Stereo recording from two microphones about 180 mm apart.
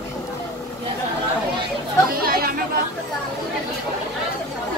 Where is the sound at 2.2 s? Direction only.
55° right (ahead or behind).